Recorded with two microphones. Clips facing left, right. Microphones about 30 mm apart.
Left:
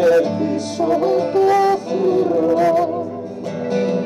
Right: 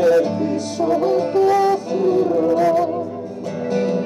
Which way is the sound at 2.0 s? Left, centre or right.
Left.